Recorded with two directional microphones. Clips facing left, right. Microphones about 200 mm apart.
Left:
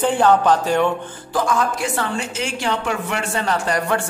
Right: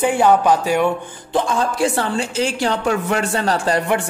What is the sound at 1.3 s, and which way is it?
A woman's voice, 30° right (ahead or behind).